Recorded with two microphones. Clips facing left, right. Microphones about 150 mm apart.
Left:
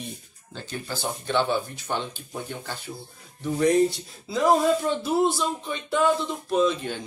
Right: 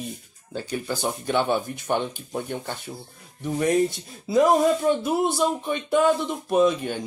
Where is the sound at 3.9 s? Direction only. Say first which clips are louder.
Right 6 dB; 50° right (ahead or behind).